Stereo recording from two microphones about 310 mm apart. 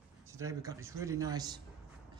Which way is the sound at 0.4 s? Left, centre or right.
Centre.